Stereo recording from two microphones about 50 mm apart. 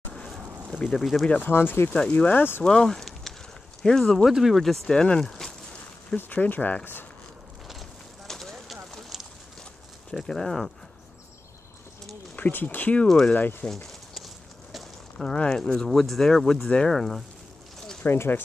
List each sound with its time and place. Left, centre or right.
0.9 s speech: centre
1.2 s speech: left
1.5 s speech: left
2.0 s speech: left
2.6 s speech: centre
4.3 s speech: centre
4.9 s speech: centre
6.1 s speech: left
8.3 s fire: centre
10.1 s speech: centre
12.4 s speech: left
13.8 s walk: centre
15.2 s speech: centre
18.0 s speech: left